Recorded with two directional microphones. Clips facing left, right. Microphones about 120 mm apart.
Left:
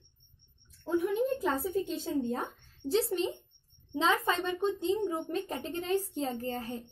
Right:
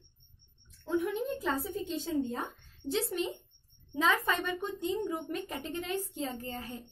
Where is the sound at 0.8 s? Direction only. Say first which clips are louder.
Left 1 dB; 40° left (ahead or behind).